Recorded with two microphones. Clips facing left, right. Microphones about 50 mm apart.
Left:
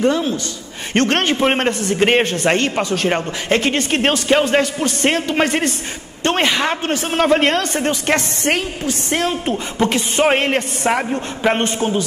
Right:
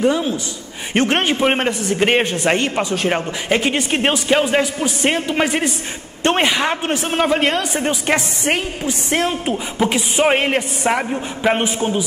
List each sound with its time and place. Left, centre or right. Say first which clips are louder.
0.0 s speech: even; centre
2.2 s speech: left 1 dB; centre
6.8 s speech: left 1 dB; centre
7.2 s speech: left 4 dB; centre
8.5 s a woman's voice: left 1 dB; right
9.3 s speech: left 1 dB; centre